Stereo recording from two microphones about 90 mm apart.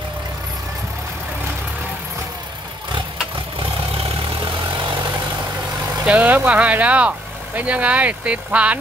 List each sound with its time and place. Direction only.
6.0 s speech: 15° right (ahead or behind)